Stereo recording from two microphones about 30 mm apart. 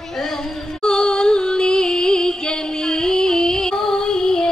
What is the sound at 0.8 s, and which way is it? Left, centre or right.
Music, left.